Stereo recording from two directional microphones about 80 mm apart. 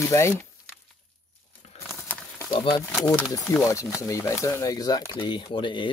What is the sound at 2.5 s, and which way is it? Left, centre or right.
Speech, left.